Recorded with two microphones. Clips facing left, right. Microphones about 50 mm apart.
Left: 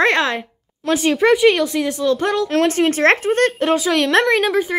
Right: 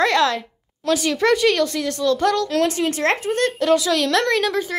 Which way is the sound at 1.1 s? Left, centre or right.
Centre.